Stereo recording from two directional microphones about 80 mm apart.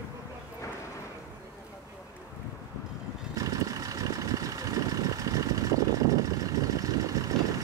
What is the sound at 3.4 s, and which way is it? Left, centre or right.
Vehicle, right.